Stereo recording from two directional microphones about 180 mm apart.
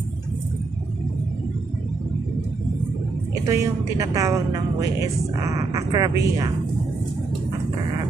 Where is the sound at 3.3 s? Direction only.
20° right (ahead or behind).